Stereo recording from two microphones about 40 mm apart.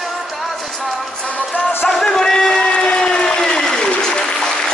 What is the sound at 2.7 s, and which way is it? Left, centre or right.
Applause, left.